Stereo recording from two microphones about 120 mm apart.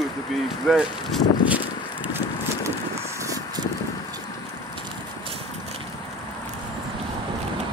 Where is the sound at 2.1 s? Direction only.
25° right (ahead or behind).